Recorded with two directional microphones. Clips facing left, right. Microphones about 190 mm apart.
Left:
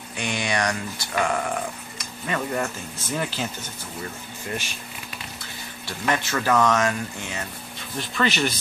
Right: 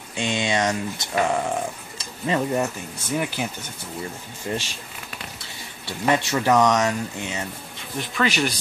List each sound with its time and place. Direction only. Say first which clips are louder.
0.1 s speech: right 3 dB; 25° right (ahead or behind)
3.4 s speech: right 1 dB; 10° right (ahead or behind)
4.5 s a man's voice: right 4 dB; 25° right (ahead or behind)
5.9 s a man's voice: right 4 dB; 25° right (ahead or behind)